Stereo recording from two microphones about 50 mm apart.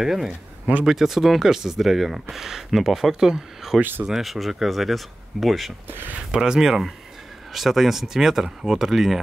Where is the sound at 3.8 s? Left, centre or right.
Right.